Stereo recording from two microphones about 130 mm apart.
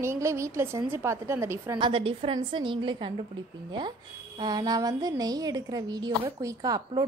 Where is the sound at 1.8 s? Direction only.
45° right (ahead or behind).